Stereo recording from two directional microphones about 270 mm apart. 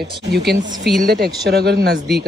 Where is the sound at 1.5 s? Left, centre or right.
Right.